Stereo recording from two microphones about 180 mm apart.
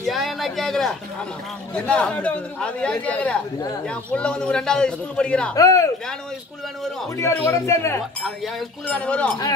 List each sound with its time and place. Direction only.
0.0 s a man's voice: centre (ahead or behind)
5.5 s speech: 20° left (ahead or behind)
7.2 s a man's voice: 15° left (ahead or behind)
8.2 s a man's voice: 5° left (ahead or behind)